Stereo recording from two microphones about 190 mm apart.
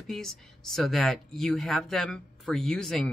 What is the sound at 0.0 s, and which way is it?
Speech, centre (ahead or behind).